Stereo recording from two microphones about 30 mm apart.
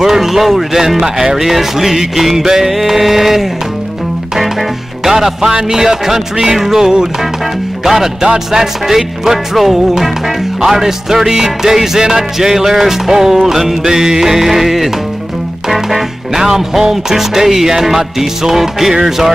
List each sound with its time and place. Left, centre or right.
0.0 s music: centre
16.3 s music: centre